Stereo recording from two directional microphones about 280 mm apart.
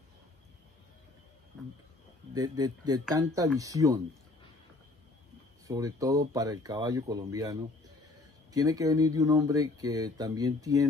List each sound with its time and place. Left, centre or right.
2.3 s speech: centre
5.7 s speech: centre
8.5 s speech: centre